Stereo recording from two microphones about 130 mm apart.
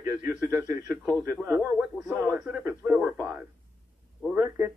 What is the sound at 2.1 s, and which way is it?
A man's voice, 25° right (ahead or behind).